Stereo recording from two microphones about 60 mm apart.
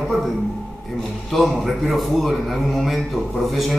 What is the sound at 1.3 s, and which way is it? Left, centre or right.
A man's voice, centre.